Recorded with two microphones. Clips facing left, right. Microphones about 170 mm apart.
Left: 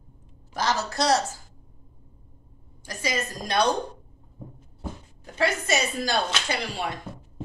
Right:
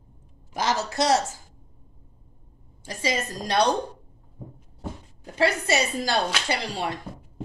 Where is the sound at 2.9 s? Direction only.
30° right (ahead or behind).